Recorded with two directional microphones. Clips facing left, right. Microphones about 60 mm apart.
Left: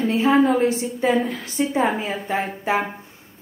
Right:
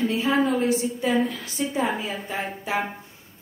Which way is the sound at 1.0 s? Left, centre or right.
Left.